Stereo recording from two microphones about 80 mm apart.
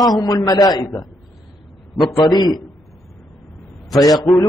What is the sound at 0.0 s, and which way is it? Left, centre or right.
A man's voice, left.